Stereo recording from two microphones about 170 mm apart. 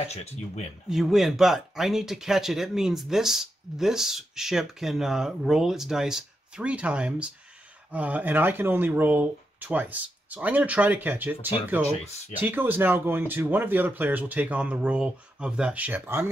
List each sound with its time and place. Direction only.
0.1 s speech: 40° left (ahead or behind)
0.8 s speech: centre (ahead or behind)